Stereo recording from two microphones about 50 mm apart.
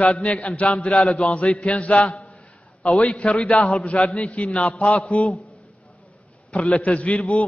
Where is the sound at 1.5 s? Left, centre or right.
Left.